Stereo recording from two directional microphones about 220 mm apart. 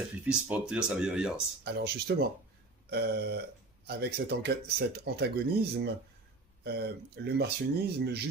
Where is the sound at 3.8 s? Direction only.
45° right (ahead or behind).